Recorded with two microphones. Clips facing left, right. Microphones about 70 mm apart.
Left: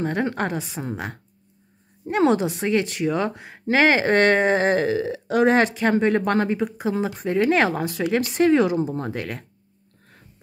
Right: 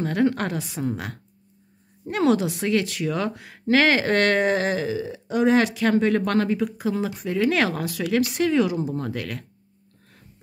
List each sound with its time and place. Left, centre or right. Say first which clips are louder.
0.0 s speech: right 1 dB; left
4.7 s speech: left 5 dB; left
5.4 s speech: left 1 dB; left